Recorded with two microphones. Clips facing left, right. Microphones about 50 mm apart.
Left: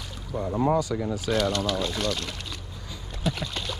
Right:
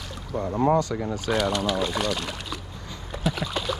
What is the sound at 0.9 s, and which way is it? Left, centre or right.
Speech, centre.